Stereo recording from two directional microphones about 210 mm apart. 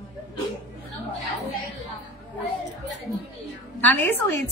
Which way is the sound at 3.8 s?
10° left (ahead or behind).